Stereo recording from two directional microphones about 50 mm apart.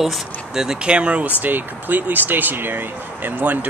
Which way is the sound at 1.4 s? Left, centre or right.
Right.